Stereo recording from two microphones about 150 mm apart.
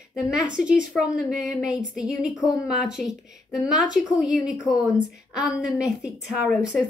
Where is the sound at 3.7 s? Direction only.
55° right (ahead or behind).